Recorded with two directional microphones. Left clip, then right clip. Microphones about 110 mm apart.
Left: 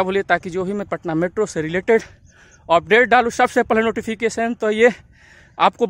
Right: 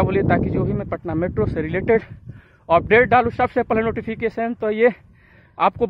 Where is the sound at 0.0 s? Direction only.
20° left (ahead or behind).